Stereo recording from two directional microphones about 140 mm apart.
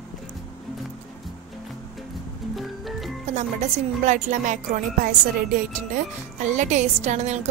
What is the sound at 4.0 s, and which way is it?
Speech, 60° right (ahead or behind).